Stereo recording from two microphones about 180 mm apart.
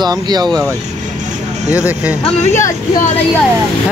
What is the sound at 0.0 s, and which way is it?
Speech, 20° right (ahead or behind).